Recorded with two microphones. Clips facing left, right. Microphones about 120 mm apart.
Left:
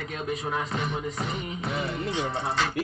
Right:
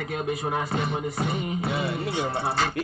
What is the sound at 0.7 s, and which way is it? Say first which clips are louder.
Music: right 3 dB; 35° right (ahead or behind).